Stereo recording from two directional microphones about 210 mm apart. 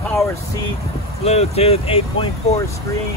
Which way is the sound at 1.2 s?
30° left (ahead or behind).